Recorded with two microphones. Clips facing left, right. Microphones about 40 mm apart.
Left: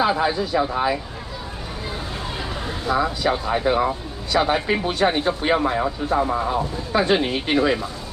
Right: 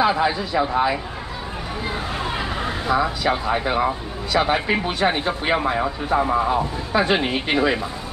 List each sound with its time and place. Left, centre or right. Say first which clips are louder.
0.0 s speech: right 1 dB; centre
2.2 s a sound: right 4 dB; right
2.9 s speech: even; centre